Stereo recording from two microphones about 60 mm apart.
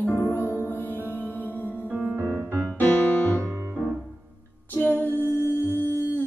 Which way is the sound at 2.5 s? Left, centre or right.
Left.